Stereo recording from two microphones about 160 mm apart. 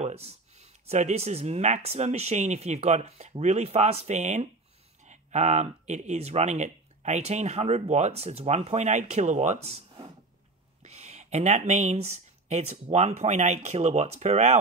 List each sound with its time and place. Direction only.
0.0 s speech: 40° right (ahead or behind)